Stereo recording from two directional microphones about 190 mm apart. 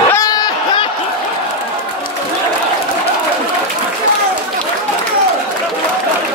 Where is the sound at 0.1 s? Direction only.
20° left (ahead or behind).